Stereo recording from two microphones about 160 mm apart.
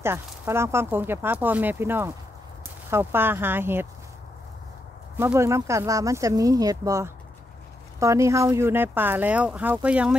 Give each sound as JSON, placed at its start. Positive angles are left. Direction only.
{"t": 0.0, "sound": "speech", "side_deg": -15}
{"t": 5.1, "sound": "speech", "side_deg": -15}